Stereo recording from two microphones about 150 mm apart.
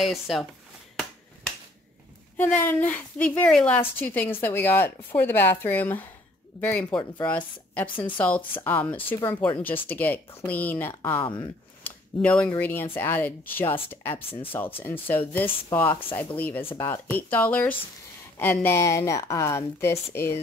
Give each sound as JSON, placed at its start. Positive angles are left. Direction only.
{"t": 0.0, "sound": "speech", "side_deg": 0}
{"t": 2.3, "sound": "speech", "side_deg": 10}
{"t": 11.2, "sound": "speech", "side_deg": 30}
{"t": 11.8, "sound": "speech", "side_deg": 10}